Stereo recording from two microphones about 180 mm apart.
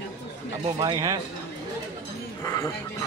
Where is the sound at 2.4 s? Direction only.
15° left (ahead or behind).